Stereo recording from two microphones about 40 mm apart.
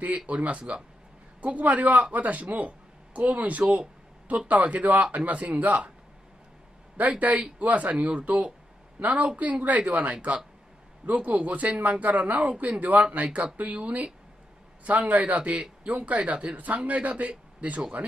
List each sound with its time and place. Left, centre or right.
0.3 s speech: right
7.0 s speech: right